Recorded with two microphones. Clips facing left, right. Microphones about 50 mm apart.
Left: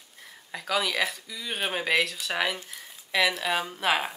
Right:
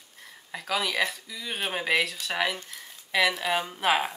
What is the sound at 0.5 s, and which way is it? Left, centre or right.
Speech, centre.